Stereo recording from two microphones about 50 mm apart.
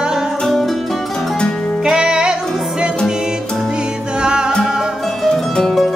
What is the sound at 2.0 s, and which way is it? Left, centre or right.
Music, centre.